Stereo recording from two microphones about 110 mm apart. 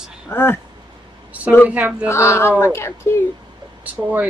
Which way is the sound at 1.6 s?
10° right (ahead or behind).